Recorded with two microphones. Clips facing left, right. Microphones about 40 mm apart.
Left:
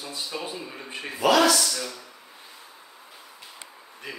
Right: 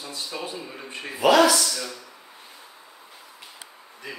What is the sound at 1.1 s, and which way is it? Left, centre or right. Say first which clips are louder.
Speech: right 2 dB; centre.